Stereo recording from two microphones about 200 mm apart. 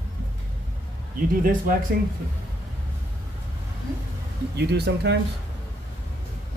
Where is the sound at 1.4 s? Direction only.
45° right (ahead or behind).